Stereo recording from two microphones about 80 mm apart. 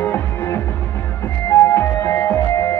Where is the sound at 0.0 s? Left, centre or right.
Left.